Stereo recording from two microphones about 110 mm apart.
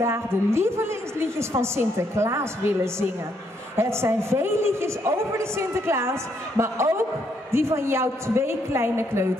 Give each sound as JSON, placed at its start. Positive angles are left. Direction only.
{"t": 0.0, "sound": "a woman's voice", "side_deg": -25}